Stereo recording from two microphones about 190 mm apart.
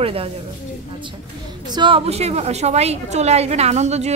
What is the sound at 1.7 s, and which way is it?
A woman's voice, 25° right (ahead or behind).